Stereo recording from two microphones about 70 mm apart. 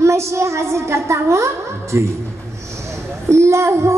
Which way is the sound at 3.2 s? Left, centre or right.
Right.